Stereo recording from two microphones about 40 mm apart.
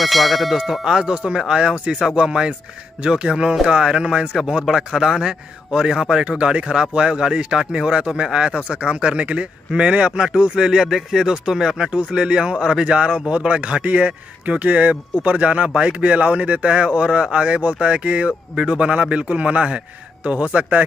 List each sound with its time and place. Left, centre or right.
0.0 s a sound: centre
0.8 s a man's voice: centre
6.3 s a man's voice: right
11.9 s a man's voice: right